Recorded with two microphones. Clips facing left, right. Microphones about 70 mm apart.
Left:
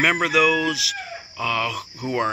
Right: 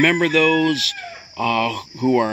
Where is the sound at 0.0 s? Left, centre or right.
Centre.